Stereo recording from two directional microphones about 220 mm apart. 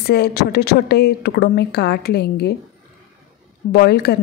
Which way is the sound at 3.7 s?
50° left (ahead or behind).